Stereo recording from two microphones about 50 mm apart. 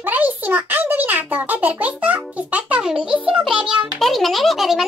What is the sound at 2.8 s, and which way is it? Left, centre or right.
Music, centre.